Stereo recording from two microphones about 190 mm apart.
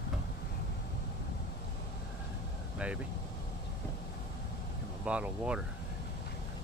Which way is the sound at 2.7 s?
5° right (ahead or behind).